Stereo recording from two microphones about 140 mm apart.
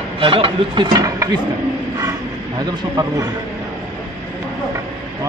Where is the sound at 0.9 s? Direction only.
25° right (ahead or behind).